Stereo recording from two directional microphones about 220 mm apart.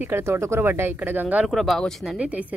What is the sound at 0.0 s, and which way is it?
Speech, 10° right (ahead or behind).